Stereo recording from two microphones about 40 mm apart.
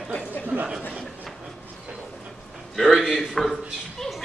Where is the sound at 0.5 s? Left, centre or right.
Right.